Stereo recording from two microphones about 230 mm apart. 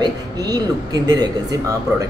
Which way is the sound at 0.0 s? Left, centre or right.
Centre.